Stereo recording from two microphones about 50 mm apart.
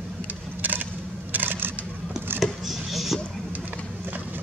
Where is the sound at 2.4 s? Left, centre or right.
Centre.